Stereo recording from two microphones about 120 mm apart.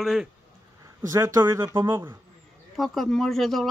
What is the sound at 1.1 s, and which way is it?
Speech, 25° right (ahead or behind).